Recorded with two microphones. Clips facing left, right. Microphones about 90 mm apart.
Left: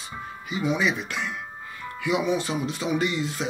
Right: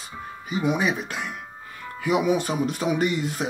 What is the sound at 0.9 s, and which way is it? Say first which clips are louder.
Speech: right 1 dB; 40° right (ahead or behind).